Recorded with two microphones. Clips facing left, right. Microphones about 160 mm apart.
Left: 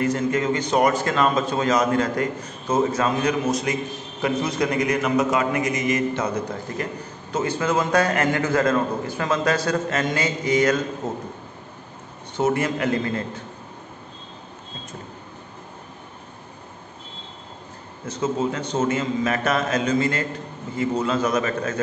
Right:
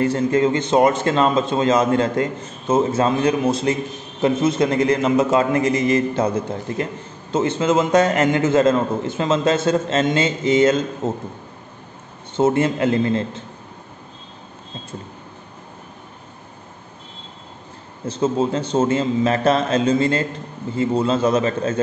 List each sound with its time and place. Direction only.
0.0 s a man's voice: 30° right (ahead or behind)
12.4 s a man's voice: 25° right (ahead or behind)
18.0 s a man's voice: 30° right (ahead or behind)